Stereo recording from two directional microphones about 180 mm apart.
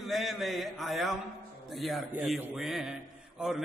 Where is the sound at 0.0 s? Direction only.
Centre (ahead or behind).